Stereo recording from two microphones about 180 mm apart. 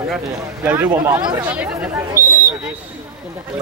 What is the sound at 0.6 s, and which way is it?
Speech, 10° right (ahead or behind).